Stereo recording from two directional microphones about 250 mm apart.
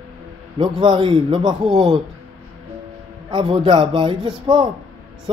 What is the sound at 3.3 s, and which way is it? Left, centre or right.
Speech, right.